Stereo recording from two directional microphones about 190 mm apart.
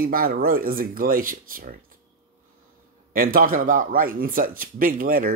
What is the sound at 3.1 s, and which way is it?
Speech, 50° right (ahead or behind).